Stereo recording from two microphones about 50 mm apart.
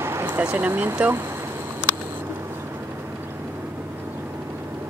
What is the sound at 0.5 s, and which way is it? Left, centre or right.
Speech, right.